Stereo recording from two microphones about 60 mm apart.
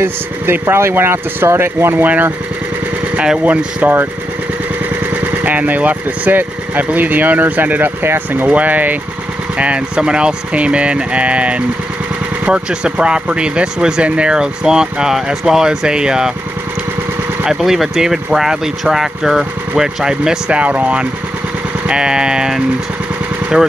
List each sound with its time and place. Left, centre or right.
0.0 s speech: right
3.4 s speech: right
5.1 s speech: right
9.6 s speech: centre
17.5 s speech: centre
20.5 s speech: right